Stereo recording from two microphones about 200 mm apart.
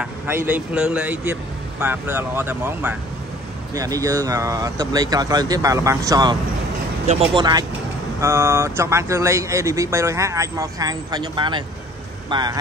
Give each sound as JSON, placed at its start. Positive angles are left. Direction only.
{"t": 0.0, "sound": "speech", "side_deg": -10}